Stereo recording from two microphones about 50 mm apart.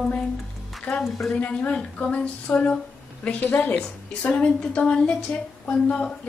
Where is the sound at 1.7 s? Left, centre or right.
Left.